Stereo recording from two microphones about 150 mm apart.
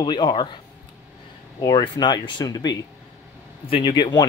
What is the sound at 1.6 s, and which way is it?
Speech, 25° left (ahead or behind).